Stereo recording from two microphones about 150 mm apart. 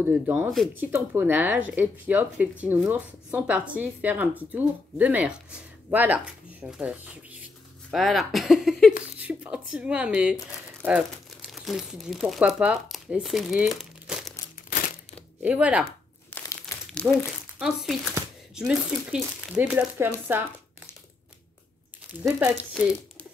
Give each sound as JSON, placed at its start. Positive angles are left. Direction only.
{"t": 0.0, "sound": "speech", "side_deg": -10}
{"t": 15.4, "sound": "speech", "side_deg": -10}
{"t": 16.3, "sound": "crumpling", "side_deg": 20}
{"t": 17.0, "sound": "speech", "side_deg": -15}
{"t": 17.6, "sound": "speech", "side_deg": 0}